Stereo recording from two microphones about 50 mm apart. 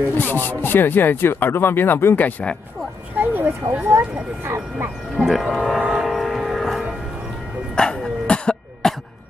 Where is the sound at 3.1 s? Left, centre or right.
Right.